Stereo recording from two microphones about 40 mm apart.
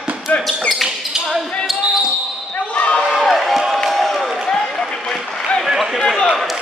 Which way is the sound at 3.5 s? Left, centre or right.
Centre.